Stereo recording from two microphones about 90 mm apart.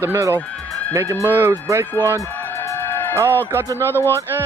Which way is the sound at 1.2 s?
25° right (ahead or behind).